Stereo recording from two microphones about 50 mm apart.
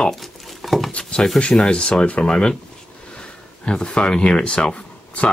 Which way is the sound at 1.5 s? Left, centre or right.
Centre.